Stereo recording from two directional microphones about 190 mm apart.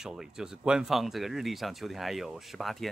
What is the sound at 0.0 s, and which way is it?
Speech, 5° right (ahead or behind).